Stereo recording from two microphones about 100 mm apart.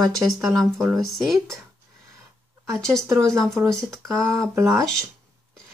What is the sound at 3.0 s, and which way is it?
Speech, 35° right (ahead or behind).